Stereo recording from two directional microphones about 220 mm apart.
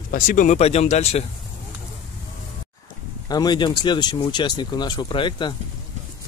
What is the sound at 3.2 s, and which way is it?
Speech, 20° left (ahead or behind).